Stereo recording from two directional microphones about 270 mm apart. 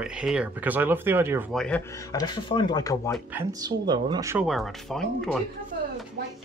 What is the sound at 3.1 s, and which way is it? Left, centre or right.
Speech, centre.